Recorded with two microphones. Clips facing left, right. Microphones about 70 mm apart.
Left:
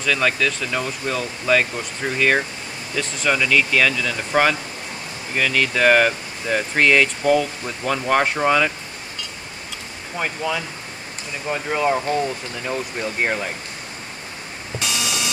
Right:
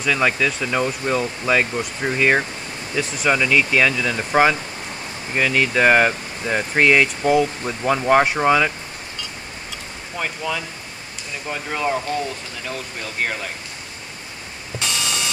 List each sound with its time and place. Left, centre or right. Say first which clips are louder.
0.0 s speech: right 1 dB; centre
10.1 s speech: left 1 dB; centre
14.8 s beep: even; centre